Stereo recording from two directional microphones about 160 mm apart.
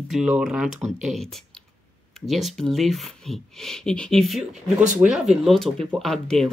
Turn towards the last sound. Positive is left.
turn(degrees=0)  # may be behind; listen again after turning